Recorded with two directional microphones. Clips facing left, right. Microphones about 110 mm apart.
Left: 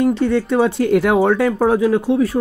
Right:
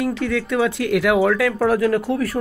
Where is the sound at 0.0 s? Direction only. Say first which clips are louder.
Left 6 dB; 35° left (ahead or behind).